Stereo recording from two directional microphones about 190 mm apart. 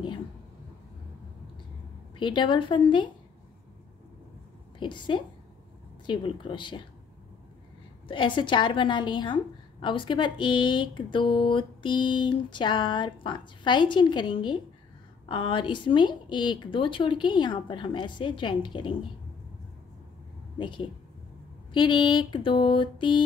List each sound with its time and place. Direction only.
2.1 s a woman's voice: 25° left (ahead or behind)
4.7 s a woman's voice: 25° left (ahead or behind)
8.1 s a woman's voice: 25° left (ahead or behind)
20.5 s a woman's voice: 25° left (ahead or behind)